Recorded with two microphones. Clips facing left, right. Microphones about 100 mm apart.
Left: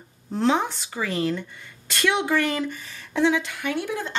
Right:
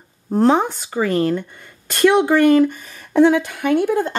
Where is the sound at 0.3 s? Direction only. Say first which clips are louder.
Right 7 dB; 45° right (ahead or behind).